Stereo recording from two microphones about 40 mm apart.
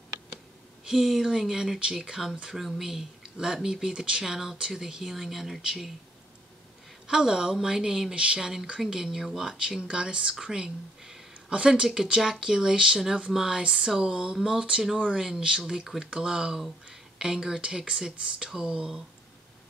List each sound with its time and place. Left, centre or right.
0.8 s speech: centre
4.2 s speech: centre
4.6 s speech: centre
5.1 s speech: centre
7.1 s speech: centre
8.1 s speech: right
8.4 s speech: centre
11.9 s speech: centre